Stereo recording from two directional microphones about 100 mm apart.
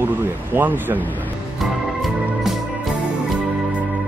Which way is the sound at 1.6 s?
Centre (ahead or behind).